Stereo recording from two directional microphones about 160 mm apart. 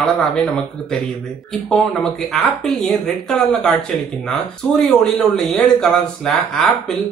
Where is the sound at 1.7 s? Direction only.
Centre (ahead or behind).